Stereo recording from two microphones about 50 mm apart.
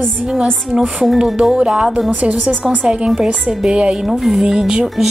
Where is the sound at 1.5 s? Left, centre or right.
Centre.